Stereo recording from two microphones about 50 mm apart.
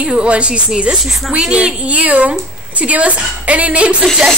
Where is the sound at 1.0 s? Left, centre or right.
Centre.